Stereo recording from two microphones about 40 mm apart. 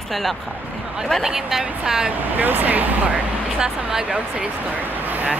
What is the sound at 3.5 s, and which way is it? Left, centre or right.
Speech, right.